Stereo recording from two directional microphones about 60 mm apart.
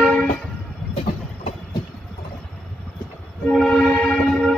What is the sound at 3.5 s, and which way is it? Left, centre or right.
Train, centre.